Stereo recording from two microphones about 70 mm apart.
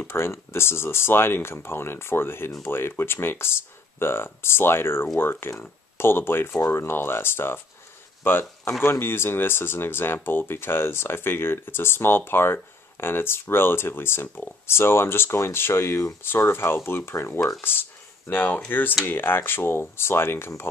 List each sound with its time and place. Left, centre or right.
0.0 s speech: left
14.7 s speech: left
16.2 s speech: left